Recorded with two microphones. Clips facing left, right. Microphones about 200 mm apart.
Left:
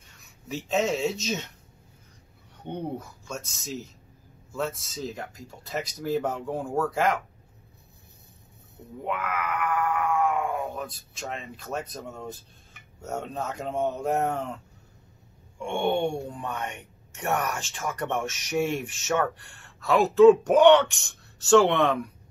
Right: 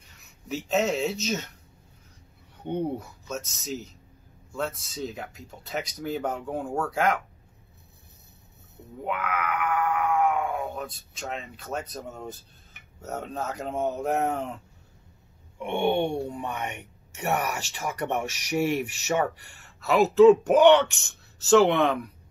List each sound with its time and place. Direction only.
0.5 s speech: centre (ahead or behind)
3.3 s speech: centre (ahead or behind)
9.0 s speech: centre (ahead or behind)
15.6 s speech: 20° right (ahead or behind); by 21.9 s centre (ahead or behind)